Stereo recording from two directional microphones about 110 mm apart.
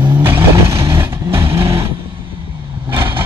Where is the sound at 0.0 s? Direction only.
20° right (ahead or behind).